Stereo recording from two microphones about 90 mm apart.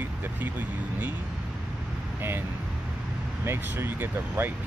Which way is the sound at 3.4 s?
25° right (ahead or behind).